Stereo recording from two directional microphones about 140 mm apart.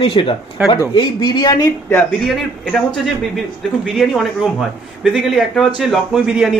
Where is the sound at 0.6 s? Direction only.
10° right (ahead or behind).